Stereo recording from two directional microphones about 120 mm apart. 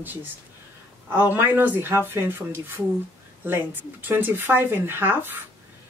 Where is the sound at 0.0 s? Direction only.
15° right (ahead or behind).